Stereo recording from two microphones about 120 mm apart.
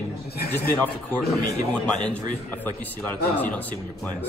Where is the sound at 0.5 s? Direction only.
15° left (ahead or behind).